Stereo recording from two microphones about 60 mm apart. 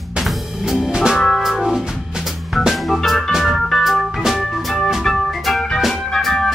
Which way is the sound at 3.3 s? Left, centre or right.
Centre.